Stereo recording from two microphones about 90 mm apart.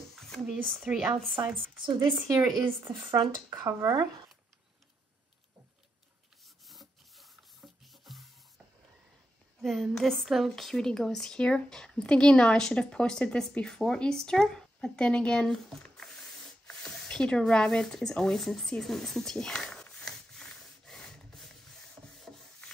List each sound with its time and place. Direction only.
0.1 s a sound: 5° left (ahead or behind)
0.8 s speech: 10° right (ahead or behind)
1.3 s speech: 25° right (ahead or behind)
2.2 s speech: 40° right (ahead or behind)
3.0 s speech: 60° right (ahead or behind)
3.4 s speech: 30° right (ahead or behind)
6.4 s rub: centre (ahead or behind)
9.6 s a woman's voice: centre (ahead or behind)
22.0 s rub: centre (ahead or behind)